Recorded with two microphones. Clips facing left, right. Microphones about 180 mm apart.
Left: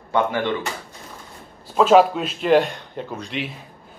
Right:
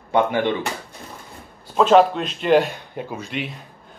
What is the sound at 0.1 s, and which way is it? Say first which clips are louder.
Speech: right 2 dB; 20° right (ahead or behind).